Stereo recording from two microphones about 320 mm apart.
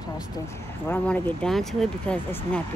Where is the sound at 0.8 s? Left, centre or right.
Centre.